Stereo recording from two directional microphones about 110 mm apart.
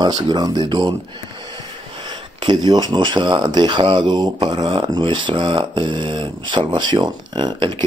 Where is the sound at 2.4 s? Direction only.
40° right (ahead or behind).